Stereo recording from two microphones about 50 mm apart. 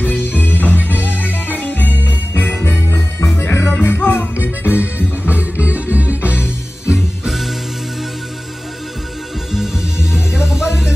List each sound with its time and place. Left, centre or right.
0.0 s music: left
3.8 s music: left
4.7 s music: right
6.9 s music: centre
10.1 s music: centre